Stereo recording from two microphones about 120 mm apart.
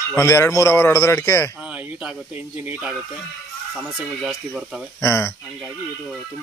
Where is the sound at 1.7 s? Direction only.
10° right (ahead or behind).